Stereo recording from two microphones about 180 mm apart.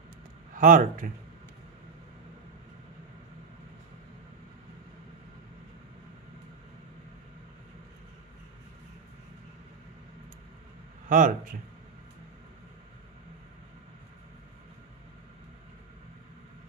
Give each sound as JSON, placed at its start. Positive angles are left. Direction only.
{"t": 0.6, "sound": "a man's voice", "side_deg": -45}
{"t": 11.1, "sound": "a man's voice", "side_deg": -45}